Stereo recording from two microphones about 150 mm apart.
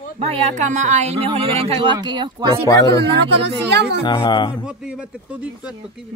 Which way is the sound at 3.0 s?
90° right.